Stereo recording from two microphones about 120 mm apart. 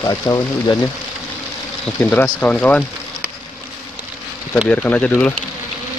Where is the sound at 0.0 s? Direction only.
30° left (ahead or behind).